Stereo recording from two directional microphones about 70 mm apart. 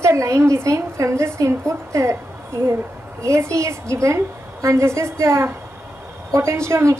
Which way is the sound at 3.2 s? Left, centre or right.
Right.